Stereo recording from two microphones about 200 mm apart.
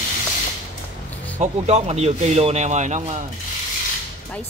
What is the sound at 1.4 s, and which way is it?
A man's voice, 35° right (ahead or behind).